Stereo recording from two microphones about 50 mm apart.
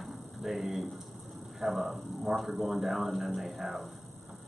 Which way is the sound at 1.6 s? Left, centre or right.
Centre.